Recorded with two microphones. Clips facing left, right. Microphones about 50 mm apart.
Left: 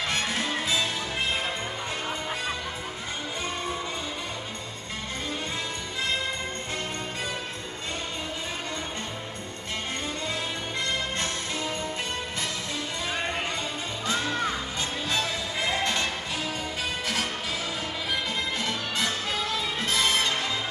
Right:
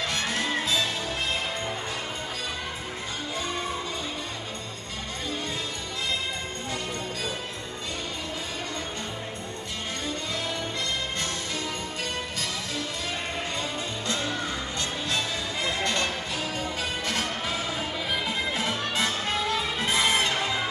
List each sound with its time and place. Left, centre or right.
0.3 s music: centre
14.8 s music: centre
17.1 s music: centre; by 20.5 s right